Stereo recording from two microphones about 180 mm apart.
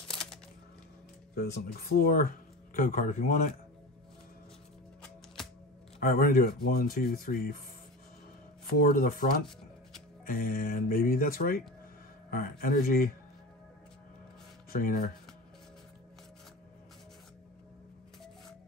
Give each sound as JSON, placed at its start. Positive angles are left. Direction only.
{"t": 1.3, "sound": "speech", "side_deg": 60}
{"t": 5.9, "sound": "speech", "side_deg": 50}
{"t": 8.7, "sound": "speech", "side_deg": 55}
{"t": 14.7, "sound": "speech", "side_deg": 50}